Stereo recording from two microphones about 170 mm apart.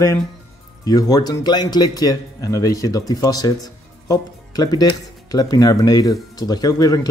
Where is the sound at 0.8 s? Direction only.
25° left (ahead or behind).